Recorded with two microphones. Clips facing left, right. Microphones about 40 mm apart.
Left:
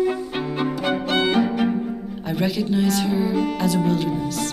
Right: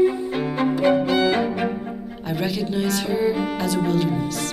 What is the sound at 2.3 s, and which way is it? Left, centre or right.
Speech, centre.